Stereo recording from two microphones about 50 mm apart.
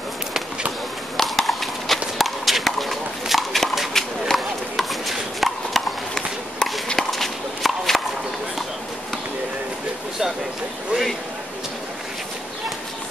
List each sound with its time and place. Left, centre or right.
1.1 s clip-clop: centre
3.9 s a sound: centre
6.1 s run: centre
7.0 s walk: centre